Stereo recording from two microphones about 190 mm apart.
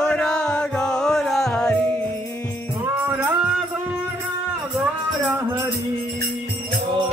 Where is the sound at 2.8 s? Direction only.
10° right (ahead or behind).